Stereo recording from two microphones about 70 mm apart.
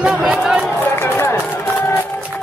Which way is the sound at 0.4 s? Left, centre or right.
Centre.